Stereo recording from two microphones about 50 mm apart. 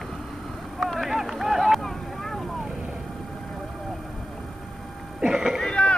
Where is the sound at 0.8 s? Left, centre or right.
Centre.